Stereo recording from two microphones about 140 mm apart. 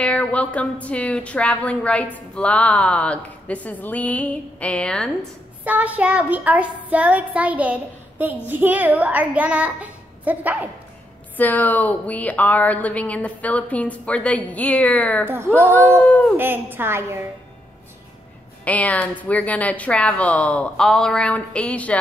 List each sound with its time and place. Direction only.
0.0 s a woman's voice: 10° left (ahead or behind)
5.6 s child singing: 10° right (ahead or behind)
11.3 s a woman's voice: 10° left (ahead or behind)
15.2 s child singing: 15° right (ahead or behind)
15.7 s a woman's voice: 10° left (ahead or behind)
16.3 s child singing: 15° right (ahead or behind)
18.6 s a woman's voice: 10° left (ahead or behind)